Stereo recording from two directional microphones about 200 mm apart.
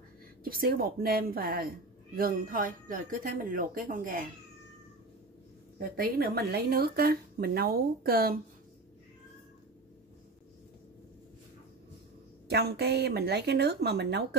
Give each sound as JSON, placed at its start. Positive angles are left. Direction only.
{"t": 0.4, "sound": "speech", "side_deg": -45}
{"t": 5.8, "sound": "speech", "side_deg": -45}
{"t": 12.4, "sound": "speech", "side_deg": -55}